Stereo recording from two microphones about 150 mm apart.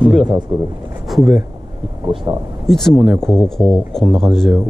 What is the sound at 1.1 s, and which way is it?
Speech, centre (ahead or behind).